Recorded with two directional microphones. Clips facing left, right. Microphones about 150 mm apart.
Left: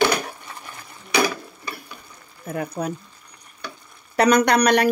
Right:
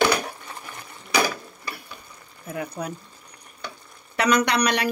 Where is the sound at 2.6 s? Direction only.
45° left (ahead or behind).